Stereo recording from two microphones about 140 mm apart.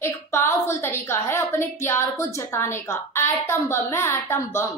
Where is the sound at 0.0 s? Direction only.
20° left (ahead or behind).